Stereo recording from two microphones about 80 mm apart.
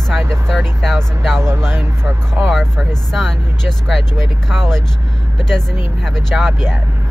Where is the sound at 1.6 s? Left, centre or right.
Right.